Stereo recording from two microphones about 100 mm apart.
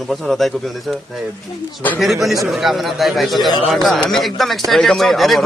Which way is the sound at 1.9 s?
Centre (ahead or behind).